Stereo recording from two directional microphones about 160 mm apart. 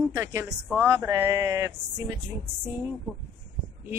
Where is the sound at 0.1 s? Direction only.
15° right (ahead or behind).